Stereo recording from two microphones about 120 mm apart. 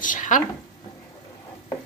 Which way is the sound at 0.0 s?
90° left.